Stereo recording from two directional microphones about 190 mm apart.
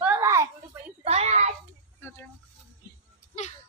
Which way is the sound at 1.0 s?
35° right (ahead or behind).